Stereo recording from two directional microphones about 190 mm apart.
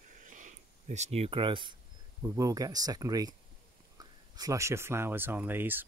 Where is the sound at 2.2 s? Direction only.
15° right (ahead or behind).